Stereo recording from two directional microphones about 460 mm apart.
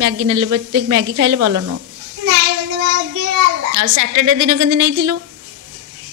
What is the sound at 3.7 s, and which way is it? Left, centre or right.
A woman's voice, right.